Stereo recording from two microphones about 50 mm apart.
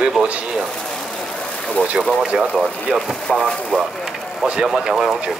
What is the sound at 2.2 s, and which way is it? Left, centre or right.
Speech, right.